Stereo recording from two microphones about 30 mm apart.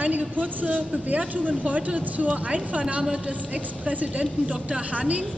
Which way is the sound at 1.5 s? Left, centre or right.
Right.